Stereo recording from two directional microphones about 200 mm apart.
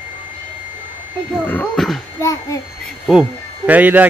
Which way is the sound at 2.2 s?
15° left (ahead or behind).